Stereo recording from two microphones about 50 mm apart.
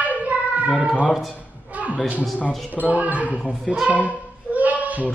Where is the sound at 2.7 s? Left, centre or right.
Right.